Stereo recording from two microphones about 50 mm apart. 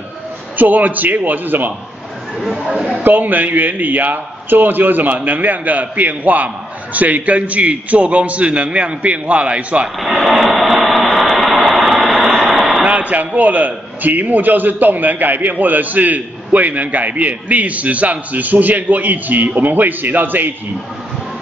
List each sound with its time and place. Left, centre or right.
0.6 s a man's voice: right
2.4 s speech: centre
2.7 s a man's voice: centre
3.0 s a man's voice: right
9.9 s a sound: centre
12.8 s a man's voice: right